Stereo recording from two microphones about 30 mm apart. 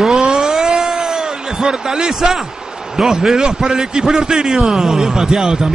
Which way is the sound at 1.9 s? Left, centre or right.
Centre.